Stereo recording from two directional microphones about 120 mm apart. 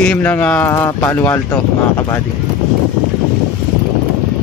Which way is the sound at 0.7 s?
30° left (ahead or behind).